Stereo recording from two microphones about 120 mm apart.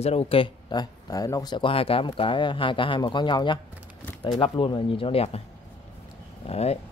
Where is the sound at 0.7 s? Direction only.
30° left (ahead or behind); by 5.4 s 55° left (ahead or behind).